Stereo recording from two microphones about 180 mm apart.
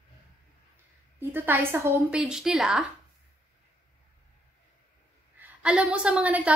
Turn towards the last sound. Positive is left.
turn(degrees=-10)  # may be behind; listen again after turning